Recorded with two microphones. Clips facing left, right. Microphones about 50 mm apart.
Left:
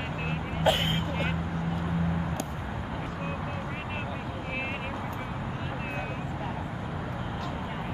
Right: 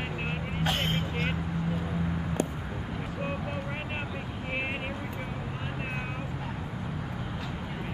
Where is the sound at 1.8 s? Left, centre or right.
Centre.